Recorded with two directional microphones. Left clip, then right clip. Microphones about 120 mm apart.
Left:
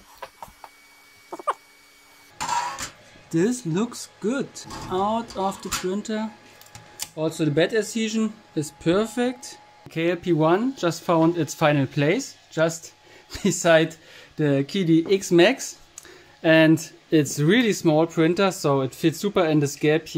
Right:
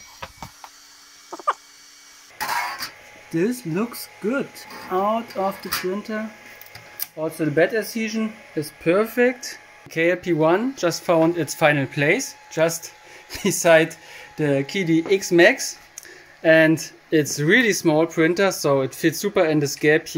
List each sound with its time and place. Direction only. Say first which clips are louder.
1.3 s dog: right 3 dB; centre (ahead or behind)
2.3 s printer: right 1 dB; 30° left (ahead or behind)
3.3 s speech: even; centre (ahead or behind)
7.2 s speech: right 2 dB; 10° left (ahead or behind)
12.4 s speech: right 2 dB; 5° left (ahead or behind)